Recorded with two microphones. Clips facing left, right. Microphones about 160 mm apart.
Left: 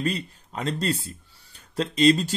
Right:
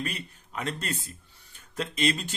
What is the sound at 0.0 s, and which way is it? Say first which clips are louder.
Speech: left 7 dB; 35° left (ahead or behind).